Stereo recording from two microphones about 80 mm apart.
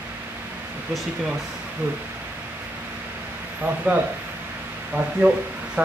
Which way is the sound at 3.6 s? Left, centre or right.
Centre.